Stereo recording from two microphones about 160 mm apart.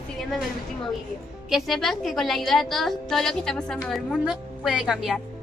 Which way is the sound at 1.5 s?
Centre (ahead or behind).